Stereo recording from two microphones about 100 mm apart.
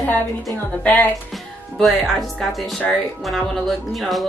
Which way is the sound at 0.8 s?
20° left (ahead or behind).